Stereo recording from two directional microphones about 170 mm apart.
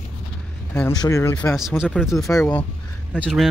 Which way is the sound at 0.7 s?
15° left (ahead or behind).